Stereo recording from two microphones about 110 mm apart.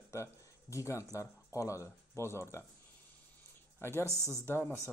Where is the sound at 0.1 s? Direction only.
25° left (ahead or behind).